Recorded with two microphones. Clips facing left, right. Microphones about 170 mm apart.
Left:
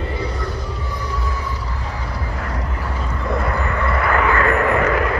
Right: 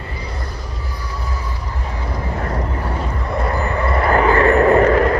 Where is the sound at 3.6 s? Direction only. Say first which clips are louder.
Right 2 dB; 30° right (ahead or behind).